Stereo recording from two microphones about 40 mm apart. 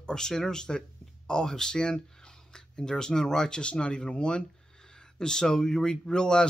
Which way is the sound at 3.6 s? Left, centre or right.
Left.